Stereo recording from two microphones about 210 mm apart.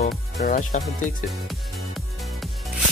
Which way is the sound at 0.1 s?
Centre (ahead or behind).